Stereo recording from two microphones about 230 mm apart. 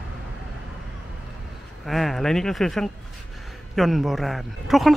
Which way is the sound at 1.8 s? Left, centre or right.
Centre.